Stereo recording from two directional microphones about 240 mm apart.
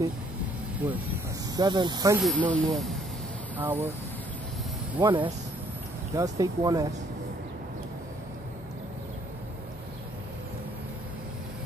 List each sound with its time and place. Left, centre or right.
1.6 s speech: centre
2.1 s speech: centre
5.0 s speech: right